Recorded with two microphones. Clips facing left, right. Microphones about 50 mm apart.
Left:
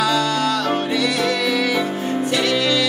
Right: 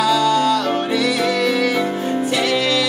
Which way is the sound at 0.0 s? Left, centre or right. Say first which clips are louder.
Right 3 dB; right.